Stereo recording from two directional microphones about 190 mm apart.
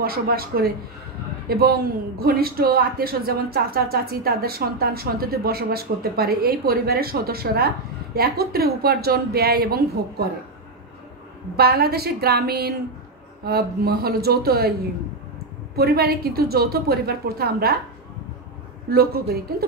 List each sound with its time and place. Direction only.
0.0 s speech: 50° right (ahead or behind)
11.5 s a woman's voice: 55° right (ahead or behind)
18.9 s speech: 55° right (ahead or behind)